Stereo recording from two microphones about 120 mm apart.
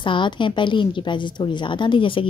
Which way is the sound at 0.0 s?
45° left (ahead or behind).